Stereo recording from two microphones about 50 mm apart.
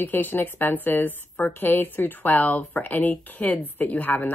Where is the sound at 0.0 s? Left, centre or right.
Left.